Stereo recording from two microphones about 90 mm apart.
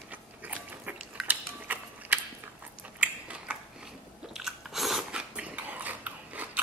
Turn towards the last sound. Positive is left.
turn(degrees=-20)  # may be behind; listen again after turning